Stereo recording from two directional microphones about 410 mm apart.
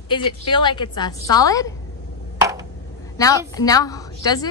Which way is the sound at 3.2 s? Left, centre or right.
Centre.